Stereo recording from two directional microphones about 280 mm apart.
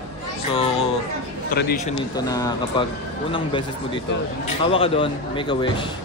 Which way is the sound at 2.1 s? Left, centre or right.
Centre.